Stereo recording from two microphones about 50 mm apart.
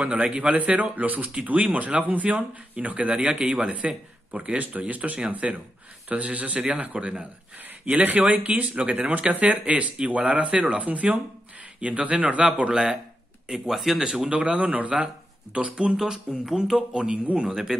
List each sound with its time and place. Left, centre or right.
0.0 s a man's voice: right
13.5 s speech: centre
14.2 s a man's voice: right
16.4 s speech: centre
16.9 s a man's voice: centre